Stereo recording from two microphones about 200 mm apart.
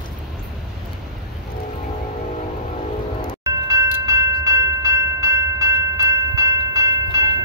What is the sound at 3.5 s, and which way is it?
Train, 15° right (ahead or behind).